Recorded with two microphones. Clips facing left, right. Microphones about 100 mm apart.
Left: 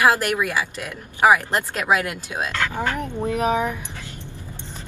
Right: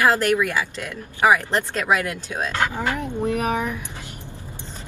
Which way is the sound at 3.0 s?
15° left (ahead or behind).